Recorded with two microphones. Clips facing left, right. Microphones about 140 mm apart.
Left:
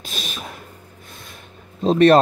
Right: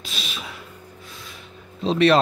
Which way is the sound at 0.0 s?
45° left (ahead or behind).